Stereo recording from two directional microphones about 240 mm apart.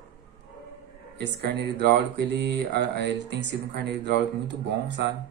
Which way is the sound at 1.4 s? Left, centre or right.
Right.